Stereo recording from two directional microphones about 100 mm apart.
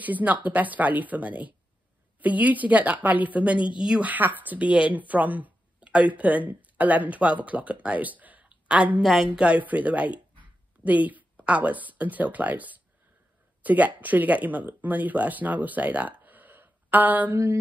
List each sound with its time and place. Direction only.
0.0 s speech: 15° right (ahead or behind)
9.0 s speech: centre (ahead or behind); by 17.6 s 20° right (ahead or behind)